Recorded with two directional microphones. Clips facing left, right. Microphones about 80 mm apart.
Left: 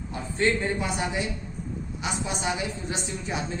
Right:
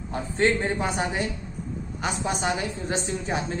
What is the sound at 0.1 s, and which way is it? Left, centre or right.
A woman's voice, right.